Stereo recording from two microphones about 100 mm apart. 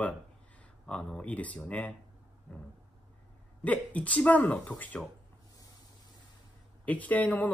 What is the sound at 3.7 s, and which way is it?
Speech, 15° left (ahead or behind).